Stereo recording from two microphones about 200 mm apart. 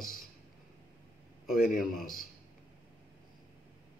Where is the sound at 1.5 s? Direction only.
45° left (ahead or behind).